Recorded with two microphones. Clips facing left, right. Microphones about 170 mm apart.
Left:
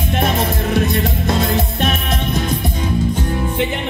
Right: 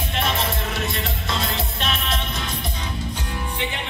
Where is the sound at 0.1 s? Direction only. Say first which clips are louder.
Left 7 dB; 50° left (ahead or behind).